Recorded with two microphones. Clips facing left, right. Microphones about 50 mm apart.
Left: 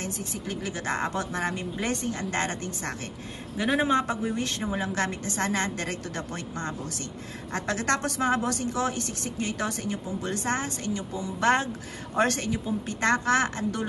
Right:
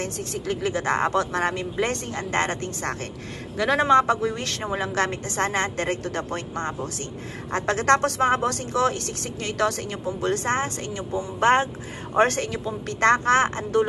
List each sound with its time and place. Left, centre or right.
0.0 s speech: right
3.5 s a man's voice: right
4.0 s speech: right
12.4 s a woman's voice: right
13.0 s speech: right